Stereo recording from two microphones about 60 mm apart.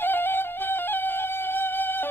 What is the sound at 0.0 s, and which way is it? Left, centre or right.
Music, left.